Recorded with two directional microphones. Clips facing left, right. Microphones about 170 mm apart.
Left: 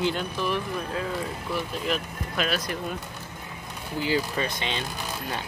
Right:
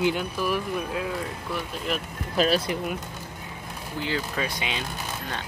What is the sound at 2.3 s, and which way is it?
Speech, 35° right (ahead or behind).